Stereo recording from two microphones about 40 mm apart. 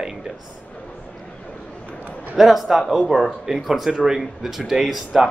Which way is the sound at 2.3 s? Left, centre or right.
Centre.